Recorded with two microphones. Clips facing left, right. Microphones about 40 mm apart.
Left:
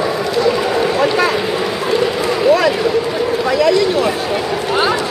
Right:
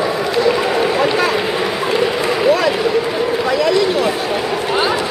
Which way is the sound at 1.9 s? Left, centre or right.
Centre.